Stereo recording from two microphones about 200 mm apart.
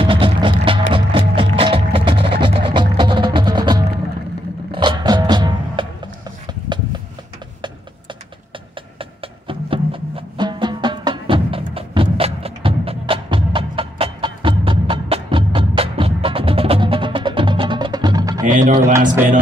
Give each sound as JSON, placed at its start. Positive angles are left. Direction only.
{"t": 0.0, "sound": "music", "side_deg": -25}
{"t": 8.9, "sound": "music", "side_deg": -25}
{"t": 18.4, "sound": "music", "side_deg": -40}